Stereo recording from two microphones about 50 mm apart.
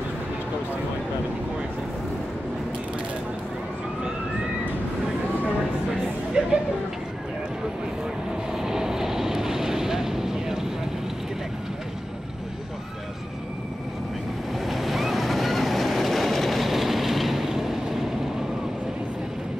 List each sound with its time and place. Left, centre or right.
6.4 s a sound: centre
8.5 s vehicle: centre
14.6 s waves: centre